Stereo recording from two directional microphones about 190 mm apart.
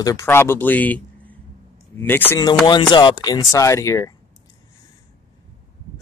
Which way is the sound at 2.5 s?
25° left (ahead or behind).